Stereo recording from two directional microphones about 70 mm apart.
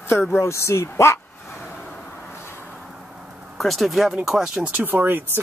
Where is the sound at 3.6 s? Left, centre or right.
Centre.